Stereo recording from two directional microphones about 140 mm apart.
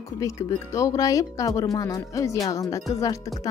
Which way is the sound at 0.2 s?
25° left (ahead or behind).